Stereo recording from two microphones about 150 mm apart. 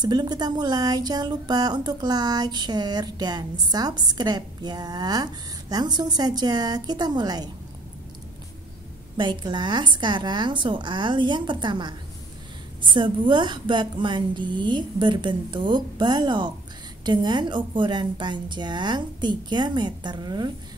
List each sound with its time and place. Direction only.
0.0 s speech: 30° right (ahead or behind)
9.1 s a woman's voice: 30° right (ahead or behind)
12.9 s a woman's voice: 35° right (ahead or behind)